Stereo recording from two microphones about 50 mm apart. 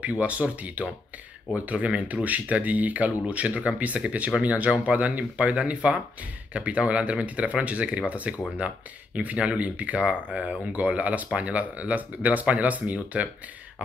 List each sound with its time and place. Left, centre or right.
0.0 s speech: right